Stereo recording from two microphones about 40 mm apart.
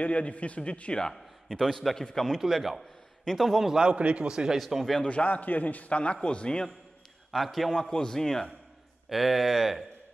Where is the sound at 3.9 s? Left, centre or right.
Right.